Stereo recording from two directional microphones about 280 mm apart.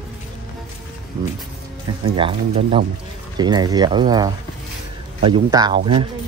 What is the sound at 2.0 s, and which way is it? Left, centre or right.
Speech, centre.